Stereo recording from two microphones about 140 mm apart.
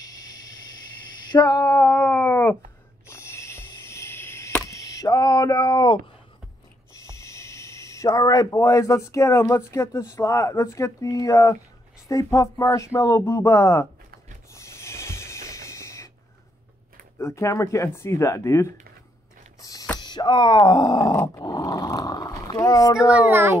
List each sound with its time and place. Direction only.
0.0 s vehicle: 25° left (ahead or behind)
1.3 s female singing: 30° left (ahead or behind)
3.1 s chop: 20° left (ahead or behind)
7.0 s a sound: 20° left (ahead or behind)
9.7 s speech: 25° left (ahead or behind)
14.5 s a sound: 20° left (ahead or behind)
17.2 s speech: 20° left (ahead or behind)
19.6 s a sound: 25° left (ahead or behind)
20.0 s speech: 30° left (ahead or behind)
21.0 s dog: 20° left (ahead or behind)
23.1 s a child's voice: 10° right (ahead or behind)